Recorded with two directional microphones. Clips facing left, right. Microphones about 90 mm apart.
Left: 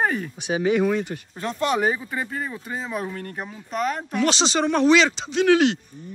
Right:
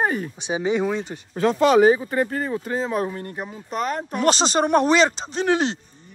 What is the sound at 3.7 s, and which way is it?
Speech, 40° right (ahead or behind).